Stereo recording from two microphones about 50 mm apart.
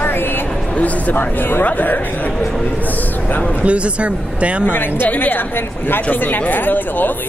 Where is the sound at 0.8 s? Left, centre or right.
Left.